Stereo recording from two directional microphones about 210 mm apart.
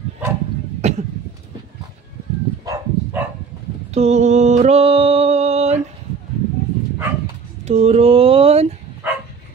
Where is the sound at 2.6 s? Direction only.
15° right (ahead or behind).